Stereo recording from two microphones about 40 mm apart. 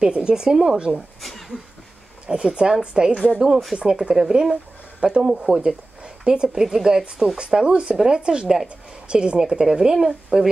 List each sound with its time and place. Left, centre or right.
0.0 s speech: right
0.7 s speech: right
2.2 s speech: right
3.3 s speech: centre
7.3 s speech: right
7.9 s speech: centre
8.2 s speech: right